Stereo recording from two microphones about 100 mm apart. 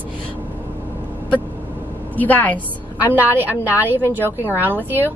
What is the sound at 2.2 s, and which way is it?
Speech, 15° left (ahead or behind).